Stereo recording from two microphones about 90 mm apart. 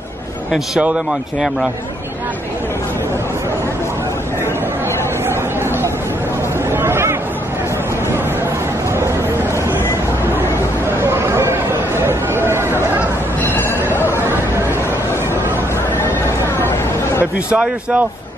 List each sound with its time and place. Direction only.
6.7 s chatter: 25° right (ahead or behind)
11.0 s chatter: 30° right (ahead or behind)
12.1 s a sound: 25° right (ahead or behind)
17.2 s a man's voice: 15° right (ahead or behind)